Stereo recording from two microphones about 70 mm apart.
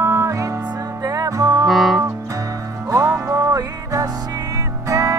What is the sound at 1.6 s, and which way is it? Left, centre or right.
Music, centre.